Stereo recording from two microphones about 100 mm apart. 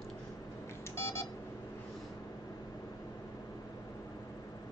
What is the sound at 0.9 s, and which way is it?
Beep, 25° left (ahead or behind).